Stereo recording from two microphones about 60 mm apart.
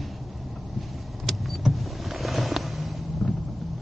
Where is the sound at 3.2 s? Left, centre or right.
Centre.